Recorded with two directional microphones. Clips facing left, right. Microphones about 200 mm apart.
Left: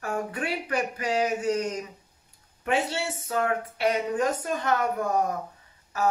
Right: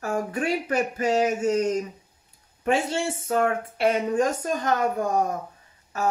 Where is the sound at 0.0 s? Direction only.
25° right (ahead or behind).